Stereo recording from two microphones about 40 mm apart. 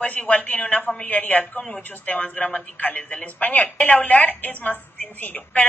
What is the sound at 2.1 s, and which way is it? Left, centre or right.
A woman's voice, left.